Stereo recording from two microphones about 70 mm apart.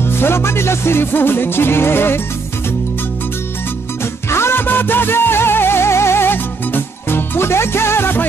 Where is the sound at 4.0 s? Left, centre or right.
Left.